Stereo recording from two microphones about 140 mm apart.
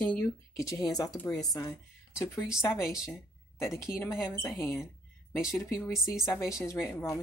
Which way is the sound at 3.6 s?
20° left (ahead or behind).